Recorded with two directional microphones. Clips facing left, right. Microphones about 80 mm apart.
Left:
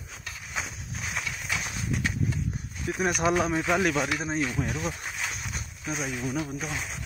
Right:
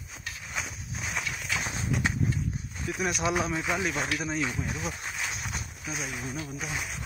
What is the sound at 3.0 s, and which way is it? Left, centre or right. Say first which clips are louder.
Speech: left 4 dB; left.